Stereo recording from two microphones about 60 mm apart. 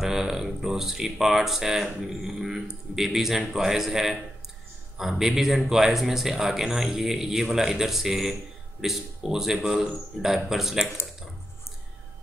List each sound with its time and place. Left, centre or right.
0.0 s a man's voice: centre